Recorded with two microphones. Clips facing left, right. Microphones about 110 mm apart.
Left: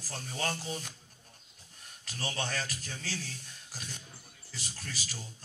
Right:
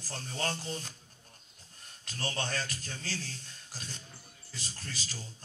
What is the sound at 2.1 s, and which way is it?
A man's voice, 15° left (ahead or behind).